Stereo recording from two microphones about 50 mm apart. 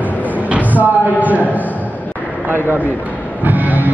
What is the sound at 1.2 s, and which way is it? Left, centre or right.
Music, right.